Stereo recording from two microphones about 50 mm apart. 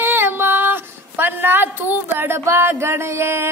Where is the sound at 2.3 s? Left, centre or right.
Right.